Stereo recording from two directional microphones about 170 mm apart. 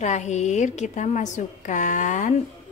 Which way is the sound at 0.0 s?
45° left (ahead or behind).